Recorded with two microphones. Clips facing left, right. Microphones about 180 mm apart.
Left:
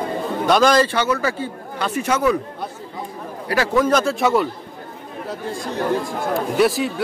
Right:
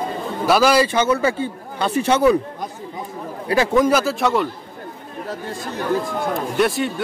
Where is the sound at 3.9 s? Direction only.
5° right (ahead or behind).